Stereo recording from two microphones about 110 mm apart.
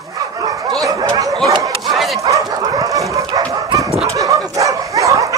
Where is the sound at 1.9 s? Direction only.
Centre (ahead or behind).